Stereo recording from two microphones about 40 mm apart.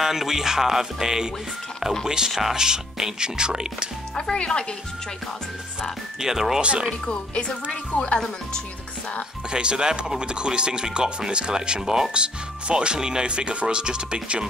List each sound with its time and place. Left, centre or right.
0.0 s speech: centre
4.1 s speech: left
6.1 s speech: centre
6.6 s speech: right
7.1 s speech: left
9.5 s speech: right
12.1 s speech: right